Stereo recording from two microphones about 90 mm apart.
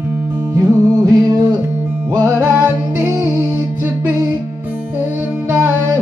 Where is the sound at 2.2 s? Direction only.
25° right (ahead or behind).